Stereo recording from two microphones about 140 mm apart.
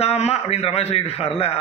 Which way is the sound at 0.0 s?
50° left (ahead or behind).